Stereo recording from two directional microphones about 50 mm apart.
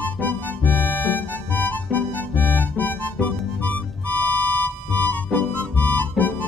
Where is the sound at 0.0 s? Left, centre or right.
Left.